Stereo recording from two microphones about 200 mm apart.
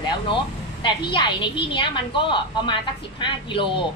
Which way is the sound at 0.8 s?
25° left (ahead or behind).